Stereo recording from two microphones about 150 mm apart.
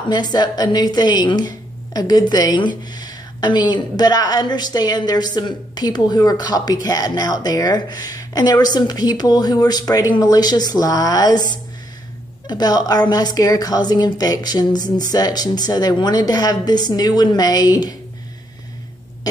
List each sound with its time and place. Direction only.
0.1 s a woman's voice: 30° left (ahead or behind)
12.4 s a woman's voice: 25° left (ahead or behind)